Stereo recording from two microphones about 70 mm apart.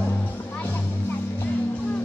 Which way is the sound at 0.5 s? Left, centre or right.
Left.